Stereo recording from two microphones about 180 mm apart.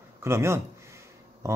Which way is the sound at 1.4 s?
15° right (ahead or behind).